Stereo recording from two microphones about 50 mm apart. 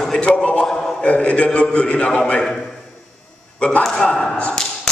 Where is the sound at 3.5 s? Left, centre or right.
Left.